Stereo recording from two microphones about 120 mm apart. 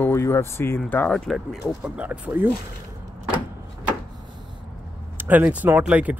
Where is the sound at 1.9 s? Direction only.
15° right (ahead or behind).